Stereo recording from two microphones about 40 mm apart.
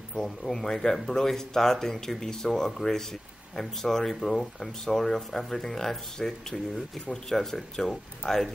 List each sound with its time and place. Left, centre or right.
0.1 s speech: centre